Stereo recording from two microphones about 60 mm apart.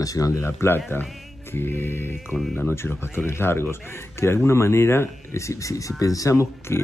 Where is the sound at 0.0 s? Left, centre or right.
Left.